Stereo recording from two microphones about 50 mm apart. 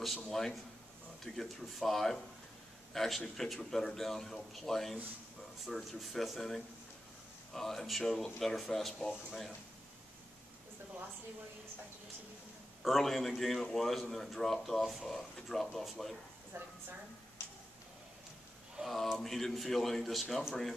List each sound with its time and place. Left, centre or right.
0.0 s a man's voice: centre
12.8 s speech: centre
16.5 s a woman's voice: right
18.8 s a sound: right
19.1 s speech: centre